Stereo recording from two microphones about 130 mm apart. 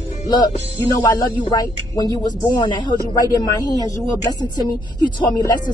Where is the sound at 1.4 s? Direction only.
35° left (ahead or behind).